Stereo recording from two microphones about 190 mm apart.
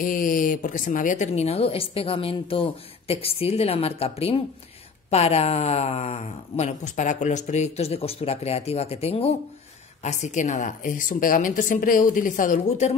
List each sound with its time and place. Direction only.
0.0 s a woman's voice: 45° left (ahead or behind)